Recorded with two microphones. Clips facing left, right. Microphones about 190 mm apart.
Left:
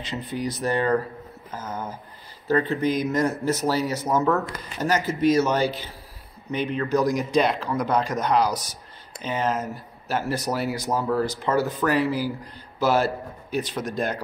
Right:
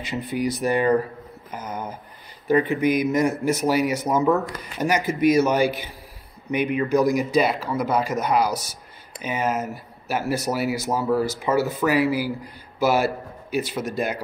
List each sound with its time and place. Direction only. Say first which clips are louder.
0.0 s speech: right 4 dB; 10° right (ahead or behind)